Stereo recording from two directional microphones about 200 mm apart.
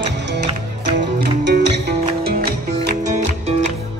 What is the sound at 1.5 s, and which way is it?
Music, 55° right (ahead or behind).